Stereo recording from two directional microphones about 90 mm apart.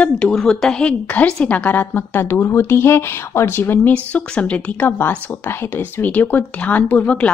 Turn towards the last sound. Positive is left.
turn(degrees=15)  # may be behind; listen again after turning